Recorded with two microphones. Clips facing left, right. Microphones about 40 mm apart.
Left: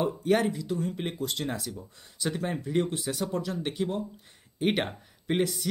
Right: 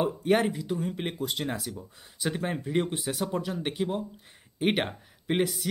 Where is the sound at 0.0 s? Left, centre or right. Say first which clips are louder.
Right 1 dB; right.